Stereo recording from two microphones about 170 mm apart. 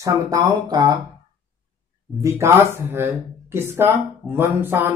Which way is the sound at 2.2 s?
15° right (ahead or behind).